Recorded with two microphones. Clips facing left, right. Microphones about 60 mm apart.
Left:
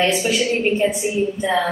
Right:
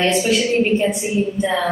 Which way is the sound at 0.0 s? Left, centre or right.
Centre.